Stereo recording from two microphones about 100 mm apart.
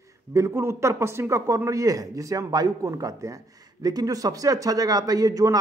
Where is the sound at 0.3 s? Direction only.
30° right (ahead or behind).